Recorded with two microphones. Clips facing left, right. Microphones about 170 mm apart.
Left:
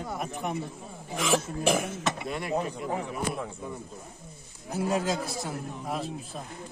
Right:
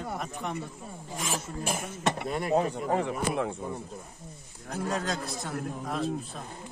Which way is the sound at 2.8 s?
70° right (ahead or behind).